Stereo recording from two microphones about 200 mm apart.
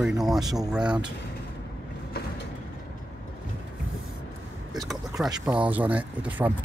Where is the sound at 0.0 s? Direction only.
Centre (ahead or behind).